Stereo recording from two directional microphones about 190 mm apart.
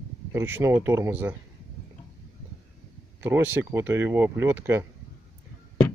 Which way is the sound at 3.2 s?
10° right (ahead or behind).